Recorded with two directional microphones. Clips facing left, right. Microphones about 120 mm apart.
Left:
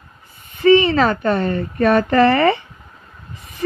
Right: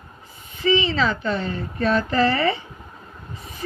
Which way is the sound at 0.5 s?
55° left (ahead or behind).